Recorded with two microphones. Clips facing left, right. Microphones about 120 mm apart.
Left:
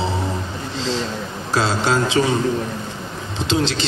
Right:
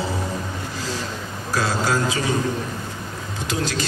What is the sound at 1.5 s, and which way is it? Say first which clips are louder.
Speech: left 3 dB; 25° left (ahead or behind).